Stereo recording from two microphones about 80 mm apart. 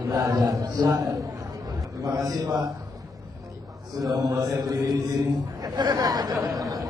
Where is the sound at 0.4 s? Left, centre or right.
Right.